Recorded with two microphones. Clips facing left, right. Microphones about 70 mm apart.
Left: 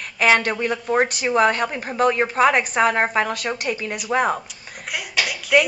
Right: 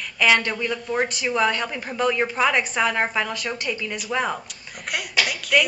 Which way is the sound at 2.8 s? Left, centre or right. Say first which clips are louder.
Left 6 dB; left.